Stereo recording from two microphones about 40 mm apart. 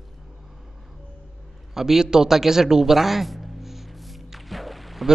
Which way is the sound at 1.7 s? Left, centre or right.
Centre.